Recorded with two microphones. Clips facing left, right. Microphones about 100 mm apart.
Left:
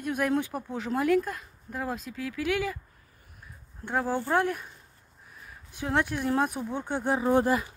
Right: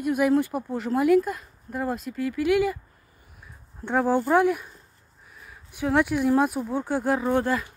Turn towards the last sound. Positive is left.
turn(degrees=15)  # may be behind; listen again after turning